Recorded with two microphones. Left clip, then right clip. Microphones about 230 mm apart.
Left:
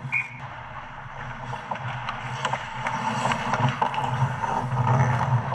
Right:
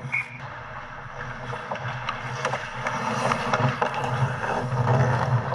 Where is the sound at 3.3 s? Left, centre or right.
Left.